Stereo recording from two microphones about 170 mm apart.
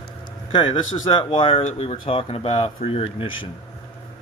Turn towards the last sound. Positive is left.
turn(degrees=35)  # may be behind; listen again after turning